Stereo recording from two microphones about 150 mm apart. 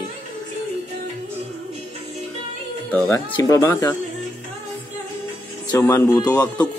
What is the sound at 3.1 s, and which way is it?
Speech, 15° left (ahead or behind).